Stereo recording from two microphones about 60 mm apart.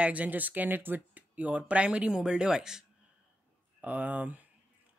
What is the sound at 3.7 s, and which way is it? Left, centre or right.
Speech, right.